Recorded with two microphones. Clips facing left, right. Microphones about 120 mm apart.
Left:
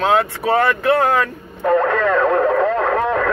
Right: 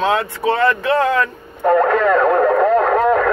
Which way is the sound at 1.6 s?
20° right (ahead or behind).